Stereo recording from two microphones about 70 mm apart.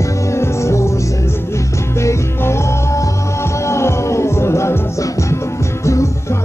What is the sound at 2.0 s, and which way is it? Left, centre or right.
Music, left.